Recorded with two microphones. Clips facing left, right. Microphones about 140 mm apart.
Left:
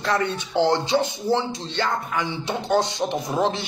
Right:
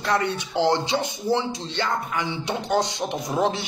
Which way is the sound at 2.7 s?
25° left (ahead or behind).